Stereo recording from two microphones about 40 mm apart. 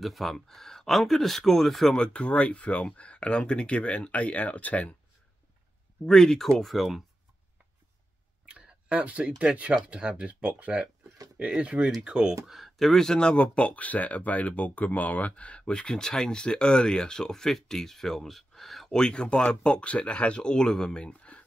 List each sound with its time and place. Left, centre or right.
0.0 s speech: centre
2.0 s speech: left
6.0 s speech: centre
8.5 s a sound: right
9.0 s speech: right
11.5 s speech: right
12.3 s speech: centre
13.0 s speech: left
15.7 s speech: centre
18.9 s speech: left
21.2 s a sound: left